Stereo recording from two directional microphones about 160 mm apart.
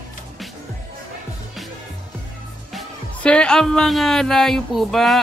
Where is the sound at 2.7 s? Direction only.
5° left (ahead or behind).